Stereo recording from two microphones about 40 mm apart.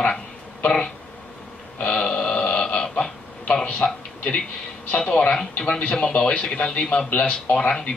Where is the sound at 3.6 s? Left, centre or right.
Left.